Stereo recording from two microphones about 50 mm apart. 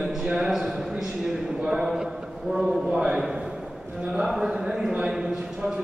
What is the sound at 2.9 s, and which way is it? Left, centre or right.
A man's voice, centre.